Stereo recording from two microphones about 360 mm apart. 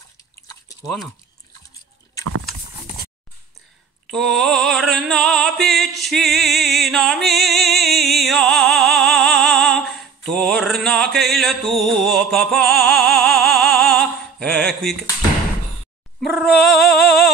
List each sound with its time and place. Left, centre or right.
0.5 s chewing: centre
4.1 s female singing: centre
16.2 s a sound: centre
16.7 s music: left